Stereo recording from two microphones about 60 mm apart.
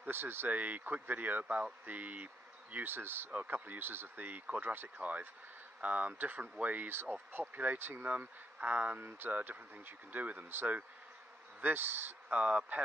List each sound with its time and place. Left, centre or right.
0.0 s speech: right
0.5 s speech: right
12.4 s speech: right